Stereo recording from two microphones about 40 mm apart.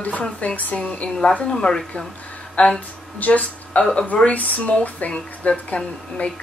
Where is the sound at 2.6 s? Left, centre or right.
Left.